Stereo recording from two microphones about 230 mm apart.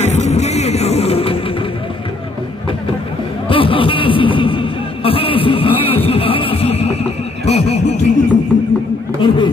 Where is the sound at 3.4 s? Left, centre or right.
Left.